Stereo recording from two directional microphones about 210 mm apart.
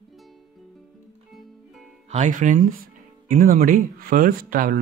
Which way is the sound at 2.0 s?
35° right (ahead or behind).